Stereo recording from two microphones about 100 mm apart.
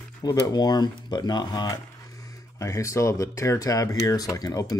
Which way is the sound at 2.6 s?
35° left (ahead or behind).